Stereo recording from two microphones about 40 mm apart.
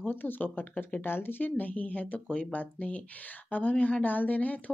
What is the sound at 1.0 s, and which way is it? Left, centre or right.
Speech, left.